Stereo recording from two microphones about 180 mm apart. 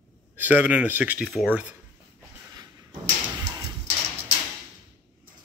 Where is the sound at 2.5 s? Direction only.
20° right (ahead or behind).